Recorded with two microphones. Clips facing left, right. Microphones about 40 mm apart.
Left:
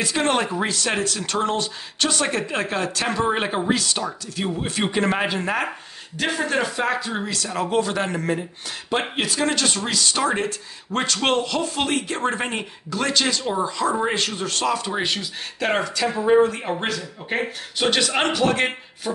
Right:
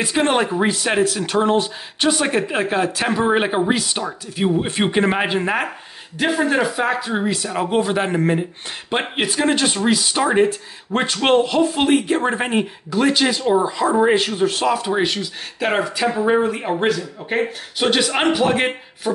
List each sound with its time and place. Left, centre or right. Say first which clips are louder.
0.0 s speech: right 3 dB; centre
19.1 s beatboxing: right 5 dB; centre